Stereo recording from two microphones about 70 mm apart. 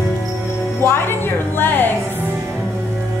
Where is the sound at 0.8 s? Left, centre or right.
Left.